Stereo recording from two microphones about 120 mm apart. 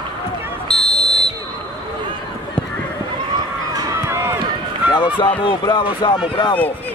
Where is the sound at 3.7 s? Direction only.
25° right (ahead or behind).